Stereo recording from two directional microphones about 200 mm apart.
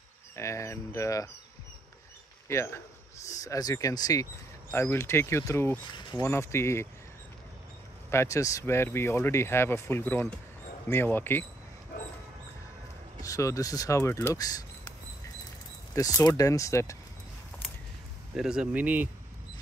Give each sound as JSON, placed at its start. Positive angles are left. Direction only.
{"t": 0.4, "sound": "speech", "side_deg": 15}
{"t": 2.4, "sound": "speech", "side_deg": 15}
{"t": 8.1, "sound": "speech", "side_deg": 15}
{"t": 13.2, "sound": "speech", "side_deg": 15}
{"t": 18.3, "sound": "speech", "side_deg": -5}